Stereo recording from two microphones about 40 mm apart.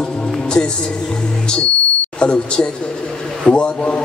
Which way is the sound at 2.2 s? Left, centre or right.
Left.